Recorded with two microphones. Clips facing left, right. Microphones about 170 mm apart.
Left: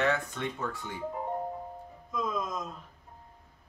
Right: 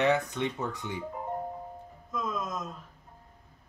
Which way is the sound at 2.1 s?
Centre (ahead or behind).